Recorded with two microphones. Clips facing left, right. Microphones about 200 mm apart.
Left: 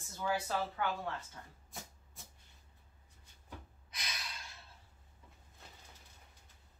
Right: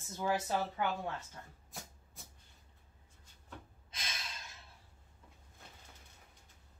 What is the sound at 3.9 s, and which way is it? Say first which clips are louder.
Gasp: even; 25° right (ahead or behind).